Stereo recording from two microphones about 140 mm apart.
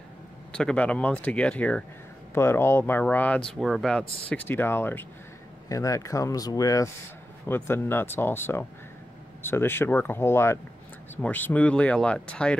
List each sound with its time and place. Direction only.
0.5 s speech: 5° left (ahead or behind)
4.3 s speech: 15° left (ahead or behind)